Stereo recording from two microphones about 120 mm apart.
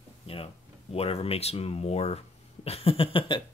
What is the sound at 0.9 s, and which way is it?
Speech, 55° left (ahead or behind).